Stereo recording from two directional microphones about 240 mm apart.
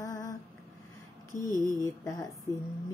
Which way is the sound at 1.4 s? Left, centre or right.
Centre.